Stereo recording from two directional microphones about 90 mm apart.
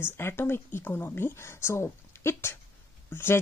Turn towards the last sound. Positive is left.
turn(degrees=25)  # may be behind; listen again after turning